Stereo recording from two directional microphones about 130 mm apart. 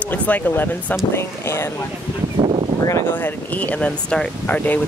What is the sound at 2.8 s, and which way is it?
Speech, 20° left (ahead or behind).